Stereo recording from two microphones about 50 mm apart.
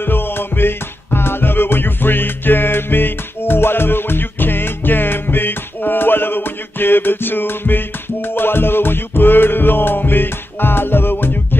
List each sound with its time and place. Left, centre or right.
0.0 s music: left